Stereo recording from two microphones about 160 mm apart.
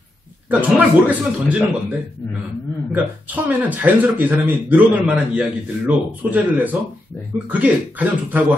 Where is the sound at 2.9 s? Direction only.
10° right (ahead or behind).